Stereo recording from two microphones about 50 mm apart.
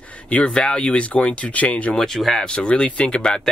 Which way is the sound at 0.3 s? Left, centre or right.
Left.